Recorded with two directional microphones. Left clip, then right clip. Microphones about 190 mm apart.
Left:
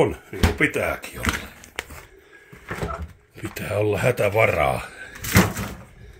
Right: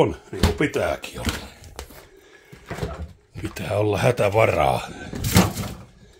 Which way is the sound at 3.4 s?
10° right (ahead or behind).